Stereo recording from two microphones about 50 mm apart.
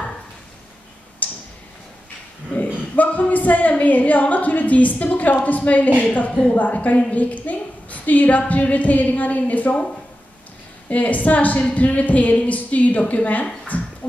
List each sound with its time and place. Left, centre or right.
1.2 s tick-tock: left
2.5 s a woman's voice: left
10.9 s a woman's voice: left
13.7 s a sound: left